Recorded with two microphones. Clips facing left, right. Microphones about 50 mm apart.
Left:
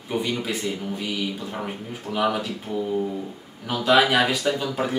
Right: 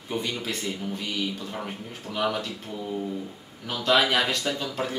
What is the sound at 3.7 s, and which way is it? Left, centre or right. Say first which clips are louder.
Speech: left 4 dB; centre.